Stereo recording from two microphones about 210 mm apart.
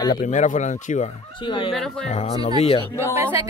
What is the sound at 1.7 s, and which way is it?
Speech, centre (ahead or behind).